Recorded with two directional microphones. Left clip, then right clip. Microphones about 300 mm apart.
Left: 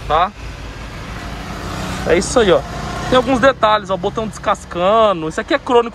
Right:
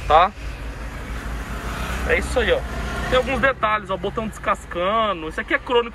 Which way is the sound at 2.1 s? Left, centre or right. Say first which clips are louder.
Left 7 dB; left.